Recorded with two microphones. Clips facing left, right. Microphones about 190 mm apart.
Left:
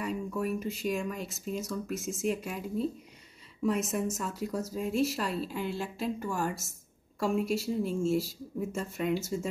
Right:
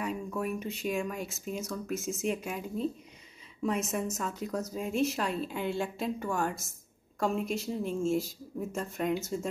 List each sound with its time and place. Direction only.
0.0 s a sound: centre (ahead or behind)
0.6 s a woman's voice: centre (ahead or behind)
8.9 s speech: 50° right (ahead or behind)
9.2 s a woman's voice: 5° left (ahead or behind)